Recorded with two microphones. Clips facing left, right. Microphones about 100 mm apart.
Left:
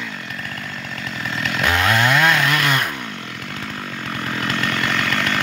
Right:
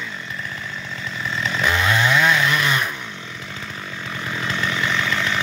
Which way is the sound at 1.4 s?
65° left (ahead or behind).